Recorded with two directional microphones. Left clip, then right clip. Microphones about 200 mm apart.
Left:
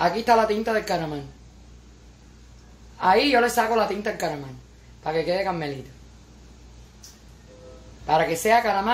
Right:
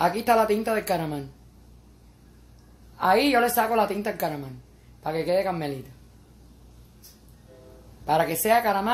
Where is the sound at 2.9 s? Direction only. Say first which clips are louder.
Left 2 dB; 35° right (ahead or behind).